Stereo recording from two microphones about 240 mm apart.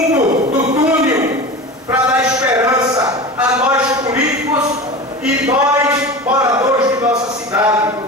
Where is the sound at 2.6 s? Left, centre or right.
Centre.